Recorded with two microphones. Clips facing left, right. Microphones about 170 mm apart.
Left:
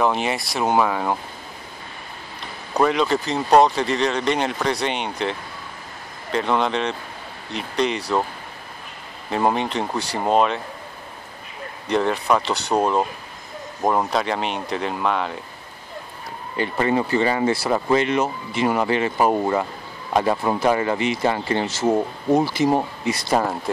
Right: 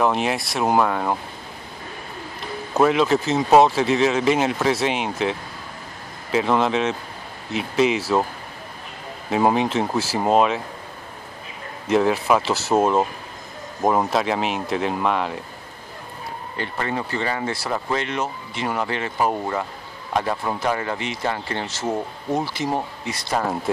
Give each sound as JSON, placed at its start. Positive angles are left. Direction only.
{"t": 0.0, "sound": "speech", "side_deg": 0}
{"t": 2.7, "sound": "speech", "side_deg": -5}
{"t": 9.3, "sound": "speech", "side_deg": 0}
{"t": 11.9, "sound": "speech", "side_deg": -5}
{"t": 16.5, "sound": "speech", "side_deg": 10}